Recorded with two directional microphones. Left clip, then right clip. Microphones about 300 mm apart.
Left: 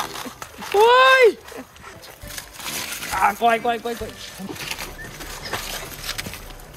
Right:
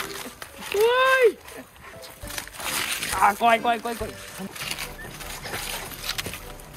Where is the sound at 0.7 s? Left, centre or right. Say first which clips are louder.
Left 6 dB; centre.